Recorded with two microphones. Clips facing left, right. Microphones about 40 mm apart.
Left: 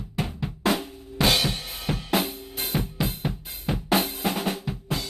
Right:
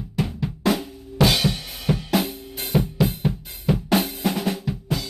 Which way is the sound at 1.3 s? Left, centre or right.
Centre.